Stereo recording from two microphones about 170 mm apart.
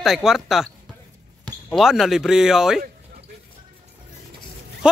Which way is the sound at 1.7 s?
Centre (ahead or behind).